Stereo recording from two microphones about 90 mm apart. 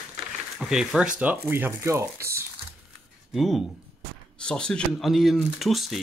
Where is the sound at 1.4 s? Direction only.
25° right (ahead or behind).